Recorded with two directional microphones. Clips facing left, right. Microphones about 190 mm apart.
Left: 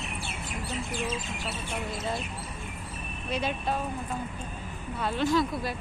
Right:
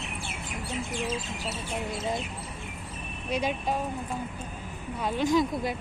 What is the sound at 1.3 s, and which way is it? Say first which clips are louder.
Speech: right 1 dB; 35° right (ahead or behind).